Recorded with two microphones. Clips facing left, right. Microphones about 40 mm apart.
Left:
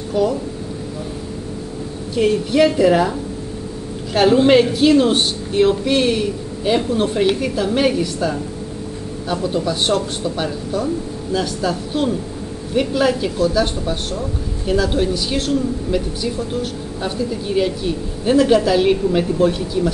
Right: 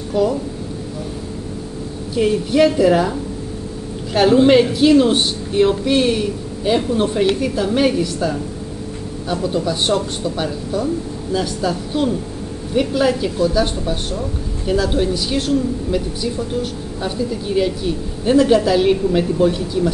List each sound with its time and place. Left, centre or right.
0.1 s speech: centre
2.1 s a woman's voice: centre